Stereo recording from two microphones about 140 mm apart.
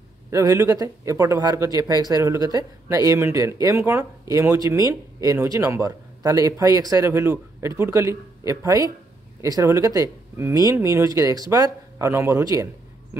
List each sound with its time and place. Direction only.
0.3 s speech: 25° right (ahead or behind)